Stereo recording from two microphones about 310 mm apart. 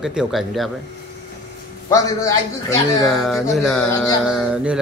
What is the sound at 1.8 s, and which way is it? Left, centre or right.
Speech, centre.